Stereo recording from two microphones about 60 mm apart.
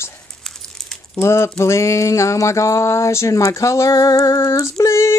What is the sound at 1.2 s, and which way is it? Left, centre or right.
Speech, left.